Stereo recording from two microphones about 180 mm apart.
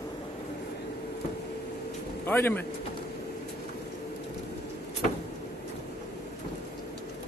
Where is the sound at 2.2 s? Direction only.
10° left (ahead or behind).